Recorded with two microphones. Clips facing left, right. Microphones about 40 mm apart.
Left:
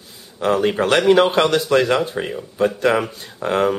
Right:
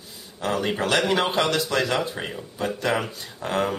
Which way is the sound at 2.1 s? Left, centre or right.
Centre.